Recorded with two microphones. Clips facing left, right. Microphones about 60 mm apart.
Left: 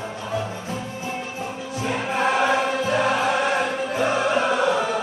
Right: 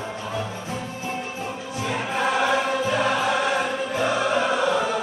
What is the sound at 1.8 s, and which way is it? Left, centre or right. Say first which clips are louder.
Music: left 2 dB; left.